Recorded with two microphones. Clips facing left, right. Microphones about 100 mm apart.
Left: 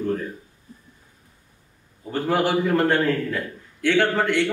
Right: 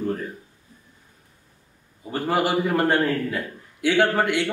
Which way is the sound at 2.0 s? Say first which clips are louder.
Left 1 dB; 5° right (ahead or behind).